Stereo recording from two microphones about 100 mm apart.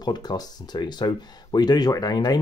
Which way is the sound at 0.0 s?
45° left (ahead or behind).